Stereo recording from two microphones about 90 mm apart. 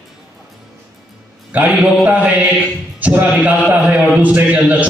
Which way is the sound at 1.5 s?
20° right (ahead or behind).